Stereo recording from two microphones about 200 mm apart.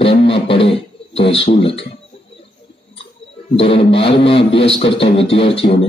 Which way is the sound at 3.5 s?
30° left (ahead or behind).